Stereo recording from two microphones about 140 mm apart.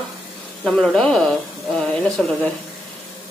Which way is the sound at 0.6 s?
5° left (ahead or behind).